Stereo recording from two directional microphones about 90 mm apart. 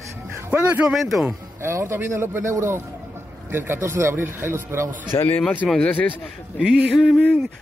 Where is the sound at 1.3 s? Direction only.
30° right (ahead or behind).